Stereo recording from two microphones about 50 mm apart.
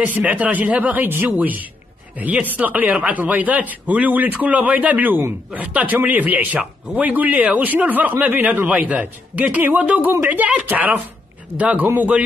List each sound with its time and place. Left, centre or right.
0.0 s speech: right